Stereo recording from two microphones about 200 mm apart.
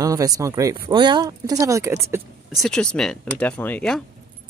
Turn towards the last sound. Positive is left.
turn(degrees=5)  # may be behind; listen again after turning